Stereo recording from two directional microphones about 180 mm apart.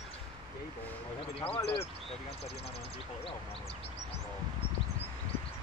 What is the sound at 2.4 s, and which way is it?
Speech, 35° left (ahead or behind).